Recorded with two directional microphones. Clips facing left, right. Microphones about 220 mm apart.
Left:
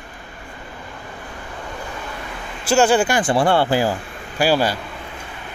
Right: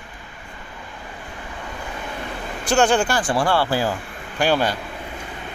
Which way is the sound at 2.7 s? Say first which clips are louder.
Left 2 dB; 5° left (ahead or behind).